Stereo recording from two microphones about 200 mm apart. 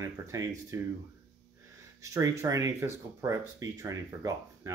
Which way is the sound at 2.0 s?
15° right (ahead or behind).